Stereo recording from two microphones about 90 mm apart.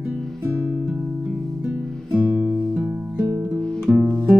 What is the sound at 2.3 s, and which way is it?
Music, 25° right (ahead or behind).